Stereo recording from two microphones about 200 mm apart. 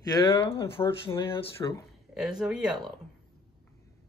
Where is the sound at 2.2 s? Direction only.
Centre (ahead or behind).